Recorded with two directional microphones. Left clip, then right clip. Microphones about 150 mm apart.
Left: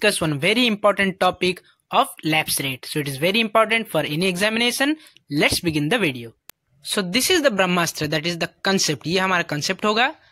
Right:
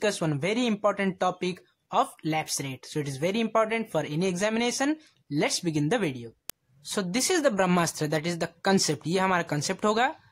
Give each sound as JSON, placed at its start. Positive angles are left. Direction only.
{"t": 0.0, "sound": "speech", "side_deg": 20}